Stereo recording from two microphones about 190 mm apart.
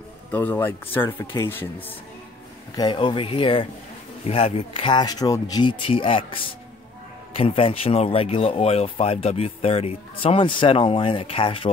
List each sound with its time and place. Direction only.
0.3 s speech: 10° left (ahead or behind)
2.7 s speech: 25° left (ahead or behind)